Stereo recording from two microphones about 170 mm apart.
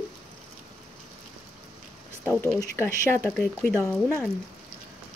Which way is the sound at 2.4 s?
15° left (ahead or behind).